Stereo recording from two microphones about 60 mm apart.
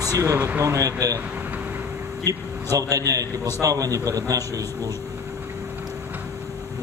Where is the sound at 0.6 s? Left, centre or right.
Right.